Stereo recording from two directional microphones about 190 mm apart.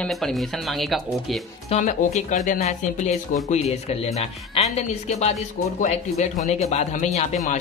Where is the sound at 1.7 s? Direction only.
40° left (ahead or behind).